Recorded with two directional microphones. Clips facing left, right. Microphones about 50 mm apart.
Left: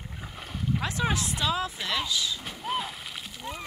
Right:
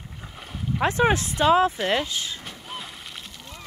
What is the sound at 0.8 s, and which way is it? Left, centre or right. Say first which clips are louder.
Speech: right 11 dB; right.